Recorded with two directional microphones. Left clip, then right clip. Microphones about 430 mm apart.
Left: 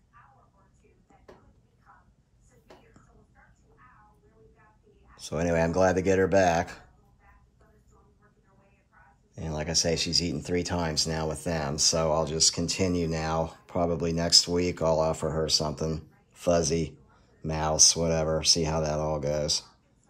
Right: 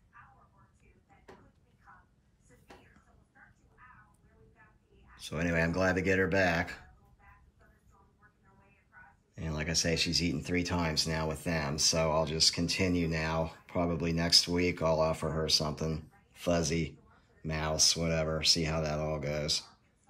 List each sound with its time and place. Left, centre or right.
5.1 s speech: centre
9.3 s speech: centre